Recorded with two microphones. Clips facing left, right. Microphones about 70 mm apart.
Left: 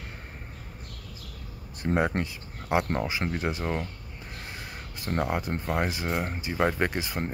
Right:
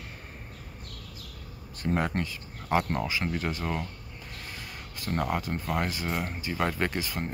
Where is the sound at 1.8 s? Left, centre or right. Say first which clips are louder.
Left 2 dB; centre.